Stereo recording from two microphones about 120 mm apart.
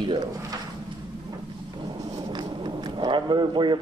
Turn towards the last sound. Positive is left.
turn(degrees=-40)  # may be behind; listen again after turning